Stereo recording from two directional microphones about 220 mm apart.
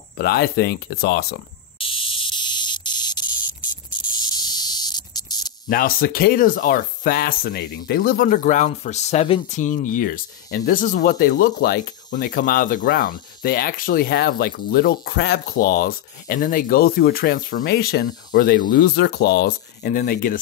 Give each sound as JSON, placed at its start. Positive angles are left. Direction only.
{"t": 0.2, "sound": "speech", "side_deg": 45}
{"t": 1.8, "sound": "cricket", "side_deg": 25}
{"t": 5.7, "sound": "speech", "side_deg": 40}